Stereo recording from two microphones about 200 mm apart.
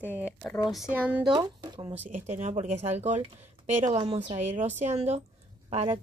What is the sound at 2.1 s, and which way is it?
Speech, 35° right (ahead or behind).